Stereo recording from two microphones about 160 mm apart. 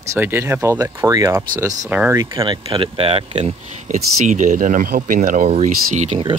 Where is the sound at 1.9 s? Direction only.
10° right (ahead or behind).